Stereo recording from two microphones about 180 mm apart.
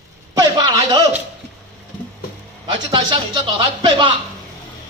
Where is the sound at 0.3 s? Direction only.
20° right (ahead or behind).